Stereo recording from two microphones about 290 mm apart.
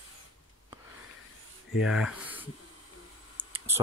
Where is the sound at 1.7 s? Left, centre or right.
Centre.